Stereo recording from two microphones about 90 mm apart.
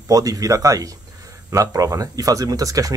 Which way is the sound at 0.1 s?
40° right (ahead or behind).